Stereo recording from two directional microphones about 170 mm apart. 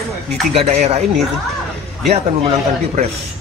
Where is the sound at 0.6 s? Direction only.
40° right (ahead or behind).